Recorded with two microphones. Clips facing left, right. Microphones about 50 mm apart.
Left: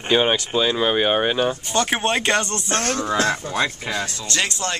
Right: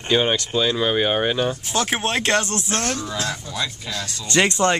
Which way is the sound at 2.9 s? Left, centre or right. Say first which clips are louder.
Left 6 dB; left.